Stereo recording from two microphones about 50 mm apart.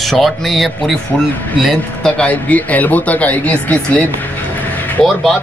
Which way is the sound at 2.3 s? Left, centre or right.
Left.